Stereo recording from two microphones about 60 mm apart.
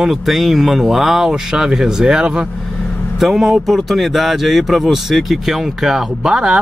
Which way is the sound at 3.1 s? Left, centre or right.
Centre.